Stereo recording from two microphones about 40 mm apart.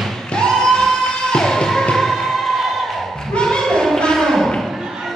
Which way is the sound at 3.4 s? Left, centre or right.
Centre.